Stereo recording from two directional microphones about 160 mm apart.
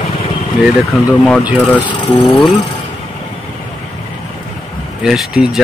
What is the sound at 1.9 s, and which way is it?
Speech, 30° left (ahead or behind).